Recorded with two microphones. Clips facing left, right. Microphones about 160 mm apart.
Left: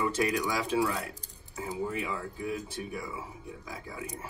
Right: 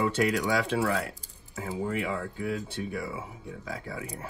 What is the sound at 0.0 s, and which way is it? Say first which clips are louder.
Speech: right 3 dB; 70° right (ahead or behind).